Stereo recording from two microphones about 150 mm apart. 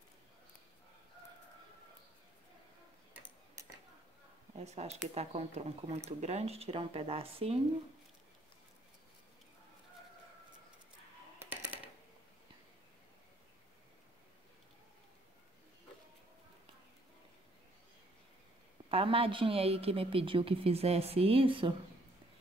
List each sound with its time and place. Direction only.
3.1 s tick-tock: 10° right (ahead or behind)
4.6 s speech: 45° right (ahead or behind)
11.3 s a sound: 15° right (ahead or behind)
18.9 s a woman's voice: 40° right (ahead or behind)